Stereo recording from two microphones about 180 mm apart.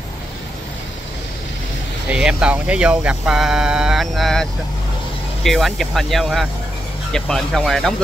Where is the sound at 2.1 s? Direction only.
5° right (ahead or behind).